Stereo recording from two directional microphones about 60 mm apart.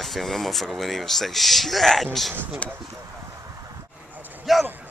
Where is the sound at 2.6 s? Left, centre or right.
Left.